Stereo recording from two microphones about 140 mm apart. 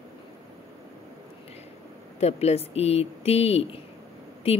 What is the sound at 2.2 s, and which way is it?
Speech, 50° left (ahead or behind).